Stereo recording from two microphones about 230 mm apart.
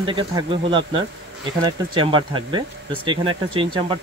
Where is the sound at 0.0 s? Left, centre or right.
Right.